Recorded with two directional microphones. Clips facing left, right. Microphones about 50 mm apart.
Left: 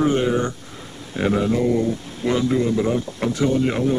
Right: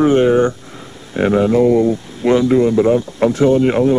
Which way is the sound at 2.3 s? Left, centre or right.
Right.